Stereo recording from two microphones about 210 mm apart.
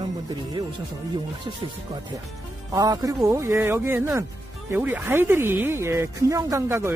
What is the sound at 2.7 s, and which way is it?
Speech, 15° right (ahead or behind).